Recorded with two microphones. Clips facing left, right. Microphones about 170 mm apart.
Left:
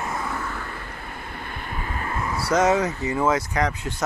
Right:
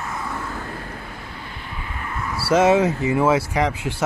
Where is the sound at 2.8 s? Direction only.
10° right (ahead or behind).